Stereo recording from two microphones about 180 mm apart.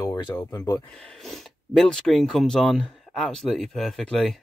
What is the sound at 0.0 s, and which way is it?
Speech, 20° left (ahead or behind).